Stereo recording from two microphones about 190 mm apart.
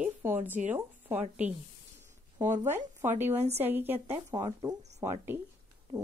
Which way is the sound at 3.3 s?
35° right (ahead or behind).